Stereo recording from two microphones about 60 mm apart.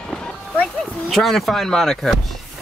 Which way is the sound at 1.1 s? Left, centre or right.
Centre.